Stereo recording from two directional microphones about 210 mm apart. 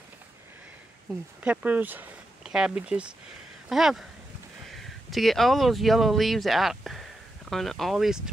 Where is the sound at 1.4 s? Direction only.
5° right (ahead or behind).